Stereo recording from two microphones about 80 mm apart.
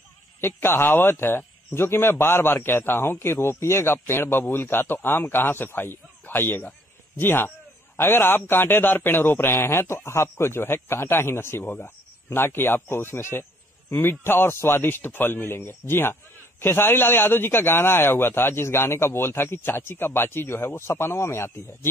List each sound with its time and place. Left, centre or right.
0.4 s a man's voice: left